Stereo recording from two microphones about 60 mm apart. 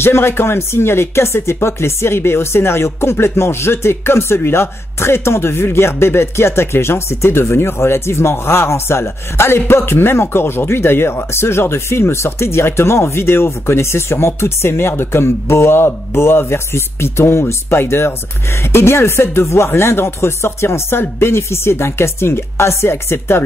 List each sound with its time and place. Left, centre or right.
0.0 s speech: left